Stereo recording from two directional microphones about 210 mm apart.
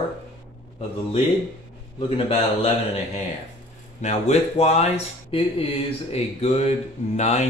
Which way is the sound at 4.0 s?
35° left (ahead or behind).